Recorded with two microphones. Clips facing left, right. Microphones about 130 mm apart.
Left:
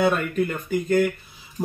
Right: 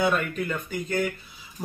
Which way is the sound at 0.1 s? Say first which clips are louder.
Left 3 dB; 45° left (ahead or behind).